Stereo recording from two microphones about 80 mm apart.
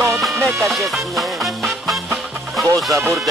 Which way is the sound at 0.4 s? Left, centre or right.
Right.